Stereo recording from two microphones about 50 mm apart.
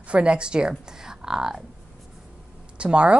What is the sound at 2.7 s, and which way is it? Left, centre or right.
Speech, right.